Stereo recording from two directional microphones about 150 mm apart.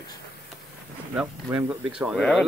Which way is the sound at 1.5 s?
10° right (ahead or behind).